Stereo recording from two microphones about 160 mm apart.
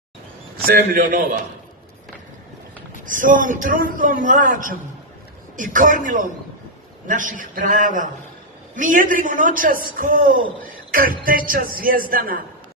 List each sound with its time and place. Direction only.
0.7 s speech: 60° right (ahead or behind)
3.1 s speech: 55° right (ahead or behind)